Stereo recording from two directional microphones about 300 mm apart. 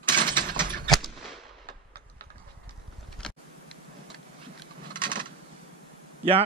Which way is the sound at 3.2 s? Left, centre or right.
Centre.